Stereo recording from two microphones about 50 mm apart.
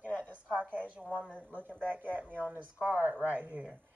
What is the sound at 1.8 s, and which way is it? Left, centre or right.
A woman's voice, right.